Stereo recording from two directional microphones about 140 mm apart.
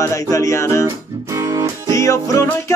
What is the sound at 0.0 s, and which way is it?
Music, 25° left (ahead or behind).